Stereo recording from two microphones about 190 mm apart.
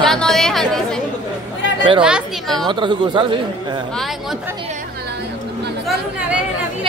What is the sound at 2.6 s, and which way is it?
Speech, 25° right (ahead or behind).